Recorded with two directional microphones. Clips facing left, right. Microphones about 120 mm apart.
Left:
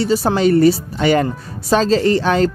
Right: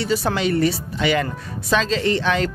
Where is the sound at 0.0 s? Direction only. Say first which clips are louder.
Left 6 dB; 35° left (ahead or behind).